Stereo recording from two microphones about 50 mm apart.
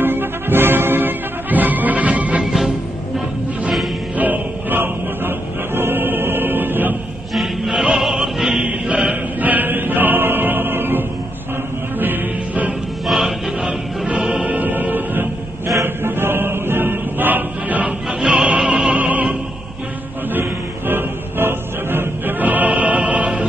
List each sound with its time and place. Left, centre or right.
0.0 s music: right
4.2 s music: right
7.3 s music: centre
8.6 s choir: right
12.0 s music: right
13.0 s music: centre
14.0 s music: right
15.8 s chant: right
17.8 s music: centre
19.0 s music: right
20.3 s music: right
22.4 s music: right